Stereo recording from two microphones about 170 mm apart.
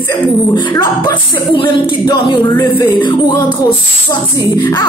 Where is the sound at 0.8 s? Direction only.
30° left (ahead or behind).